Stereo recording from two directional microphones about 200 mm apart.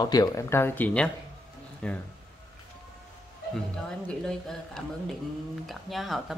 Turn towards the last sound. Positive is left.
turn(degrees=0)  # may be behind; listen again after turning